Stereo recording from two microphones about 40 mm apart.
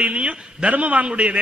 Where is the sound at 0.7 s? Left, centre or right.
Right.